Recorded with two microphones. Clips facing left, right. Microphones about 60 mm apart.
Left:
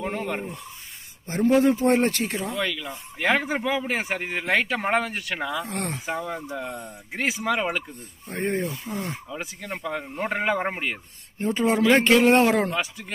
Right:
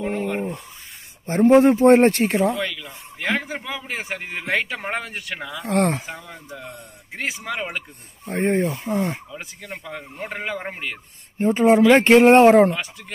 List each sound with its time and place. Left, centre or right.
0.0 s a sound: centre
1.2 s speech: right
2.6 s speech: centre
3.4 s speech: centre
5.7 s speech: right
6.0 s speech: centre
7.5 s speech: centre
8.3 s speech: right
9.3 s speech: centre
11.3 s speech: right